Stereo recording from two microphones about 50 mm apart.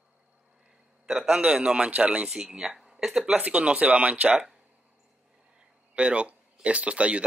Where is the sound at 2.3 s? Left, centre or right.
Centre.